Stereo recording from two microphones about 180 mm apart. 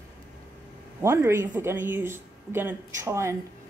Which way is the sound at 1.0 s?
15° right (ahead or behind).